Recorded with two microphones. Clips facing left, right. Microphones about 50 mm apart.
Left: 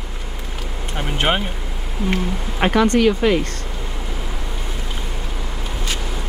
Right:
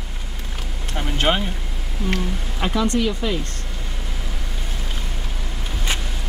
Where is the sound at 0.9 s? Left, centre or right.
Centre.